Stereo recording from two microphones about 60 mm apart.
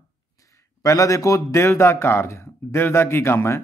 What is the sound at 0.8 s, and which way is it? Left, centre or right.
Speech, left.